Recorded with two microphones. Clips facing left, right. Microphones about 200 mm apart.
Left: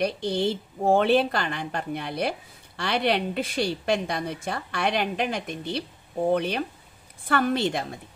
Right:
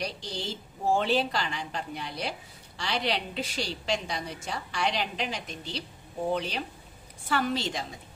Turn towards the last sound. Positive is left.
turn(degrees=55)  # may be behind; listen again after turning